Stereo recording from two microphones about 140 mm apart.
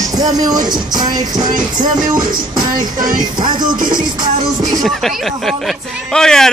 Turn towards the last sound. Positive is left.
turn(degrees=5)  # may be behind; listen again after turning